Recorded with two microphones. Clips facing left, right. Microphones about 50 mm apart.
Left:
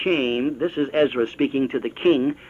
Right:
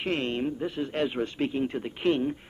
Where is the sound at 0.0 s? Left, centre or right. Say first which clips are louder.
Left 8 dB; left.